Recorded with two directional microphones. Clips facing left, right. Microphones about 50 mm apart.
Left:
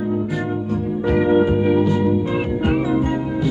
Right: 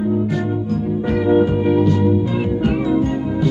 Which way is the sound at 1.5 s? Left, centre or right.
Centre.